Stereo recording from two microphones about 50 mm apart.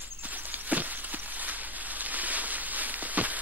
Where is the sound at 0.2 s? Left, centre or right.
Right.